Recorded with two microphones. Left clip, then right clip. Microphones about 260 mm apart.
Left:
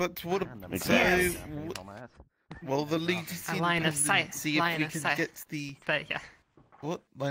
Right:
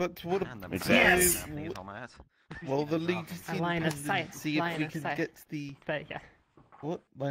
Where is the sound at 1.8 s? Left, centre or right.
Right.